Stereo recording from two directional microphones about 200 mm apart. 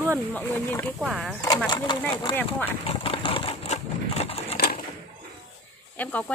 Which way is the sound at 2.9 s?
25° left (ahead or behind).